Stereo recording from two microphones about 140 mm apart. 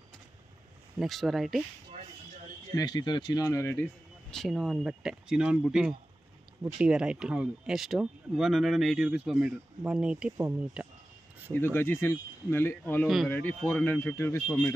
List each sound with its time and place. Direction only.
0.9 s speech: centre (ahead or behind)
2.7 s speech: 30° left (ahead or behind)
4.3 s speech: centre (ahead or behind)
11.5 s speech: 15° left (ahead or behind)
13.0 s speech: centre (ahead or behind)
13.3 s speech: 15° left (ahead or behind)